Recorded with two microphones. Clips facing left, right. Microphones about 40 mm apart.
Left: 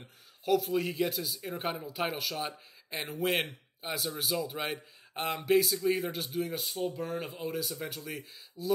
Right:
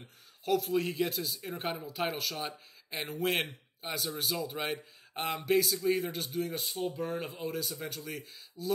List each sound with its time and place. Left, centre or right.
0.0 s speech: centre